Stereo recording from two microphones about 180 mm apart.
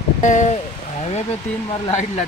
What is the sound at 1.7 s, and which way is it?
Speech, 35° left (ahead or behind).